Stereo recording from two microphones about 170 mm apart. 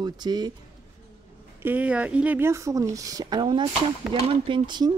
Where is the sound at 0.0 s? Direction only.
25° right (ahead or behind).